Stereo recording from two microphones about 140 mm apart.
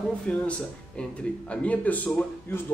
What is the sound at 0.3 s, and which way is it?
Speech, 10° left (ahead or behind).